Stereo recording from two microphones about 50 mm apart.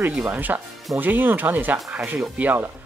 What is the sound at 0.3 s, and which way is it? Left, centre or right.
Speech, right.